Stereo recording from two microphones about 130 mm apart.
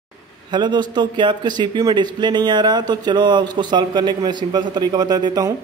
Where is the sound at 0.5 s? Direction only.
35° right (ahead or behind).